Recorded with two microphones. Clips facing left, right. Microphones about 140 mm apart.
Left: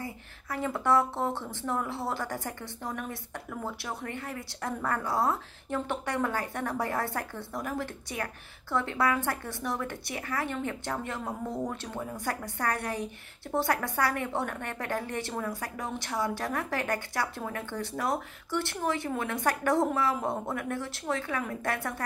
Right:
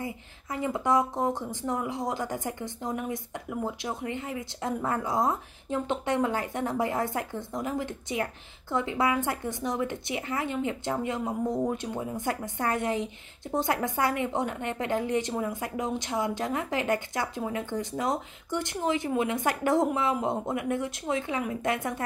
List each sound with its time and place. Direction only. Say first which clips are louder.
0.0 s speech: right 3 dB; 20° right (ahead or behind)